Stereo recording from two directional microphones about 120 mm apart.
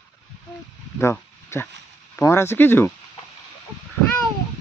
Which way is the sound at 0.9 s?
20° left (ahead or behind).